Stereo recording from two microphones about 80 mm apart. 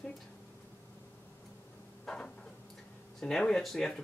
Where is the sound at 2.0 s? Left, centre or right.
Centre.